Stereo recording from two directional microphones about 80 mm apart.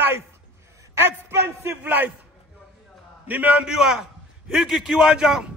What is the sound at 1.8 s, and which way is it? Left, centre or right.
Speech, right.